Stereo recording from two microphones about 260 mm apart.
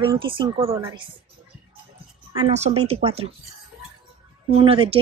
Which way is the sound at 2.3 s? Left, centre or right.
Right.